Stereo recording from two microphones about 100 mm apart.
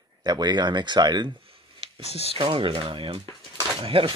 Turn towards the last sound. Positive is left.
turn(degrees=-65)  # may be behind; listen again after turning